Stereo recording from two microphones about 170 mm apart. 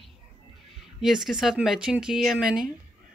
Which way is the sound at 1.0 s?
Centre (ahead or behind).